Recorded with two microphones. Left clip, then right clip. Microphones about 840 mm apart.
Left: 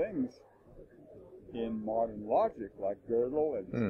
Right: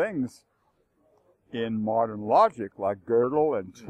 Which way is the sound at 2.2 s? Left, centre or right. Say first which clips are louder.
Right 12 dB; right.